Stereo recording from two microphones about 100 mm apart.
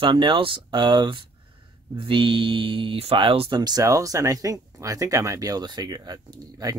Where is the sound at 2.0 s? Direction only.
60° right (ahead or behind).